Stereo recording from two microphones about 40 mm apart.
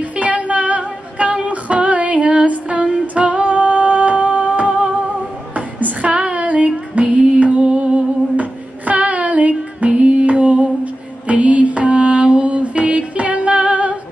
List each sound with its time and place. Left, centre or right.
0.1 s music: right
1.5 s female singing: right
3.2 s music: right
8.4 s female singing: right